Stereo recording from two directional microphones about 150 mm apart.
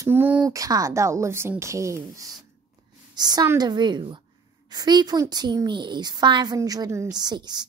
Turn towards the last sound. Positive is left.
turn(degrees=-30)  # may be behind; listen again after turning